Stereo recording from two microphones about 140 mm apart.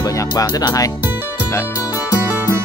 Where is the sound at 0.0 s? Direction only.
25° left (ahead or behind).